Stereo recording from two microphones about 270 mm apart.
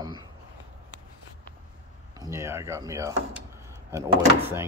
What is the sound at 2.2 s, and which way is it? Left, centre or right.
Speech, centre.